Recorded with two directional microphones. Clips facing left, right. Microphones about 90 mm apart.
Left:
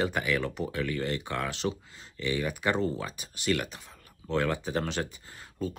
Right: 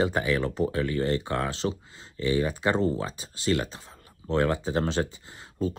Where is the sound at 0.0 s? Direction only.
30° right (ahead or behind).